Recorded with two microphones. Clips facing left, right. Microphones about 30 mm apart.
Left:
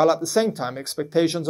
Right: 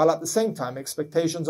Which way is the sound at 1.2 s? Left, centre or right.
Left.